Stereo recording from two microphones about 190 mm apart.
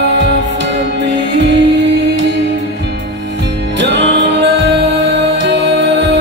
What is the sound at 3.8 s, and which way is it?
Music, 65° right (ahead or behind).